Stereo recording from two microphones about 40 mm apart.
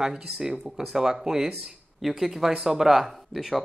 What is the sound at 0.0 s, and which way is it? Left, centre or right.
Speech, centre.